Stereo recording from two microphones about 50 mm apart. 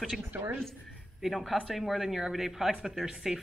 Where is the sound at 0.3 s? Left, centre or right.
Right.